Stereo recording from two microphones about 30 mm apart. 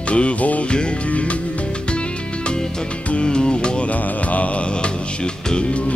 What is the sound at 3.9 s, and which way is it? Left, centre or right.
Music, left.